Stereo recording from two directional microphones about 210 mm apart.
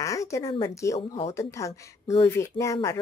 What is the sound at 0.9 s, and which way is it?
Speech, 30° left (ahead or behind).